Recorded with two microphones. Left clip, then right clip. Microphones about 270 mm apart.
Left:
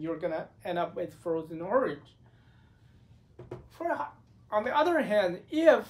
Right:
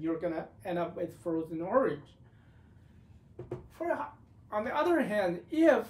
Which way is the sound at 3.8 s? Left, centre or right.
Centre.